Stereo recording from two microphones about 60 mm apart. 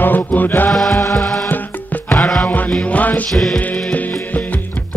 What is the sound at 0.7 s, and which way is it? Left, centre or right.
Music, centre.